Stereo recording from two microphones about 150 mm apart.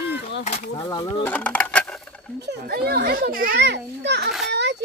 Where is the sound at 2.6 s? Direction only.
90° right; by 3.6 s 70° right (ahead or behind).